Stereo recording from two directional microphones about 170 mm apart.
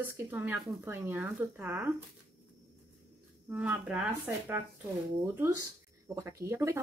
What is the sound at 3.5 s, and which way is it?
Speech, 10° right (ahead or behind).